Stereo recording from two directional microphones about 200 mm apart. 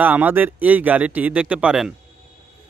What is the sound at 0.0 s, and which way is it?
Speech, 10° right (ahead or behind).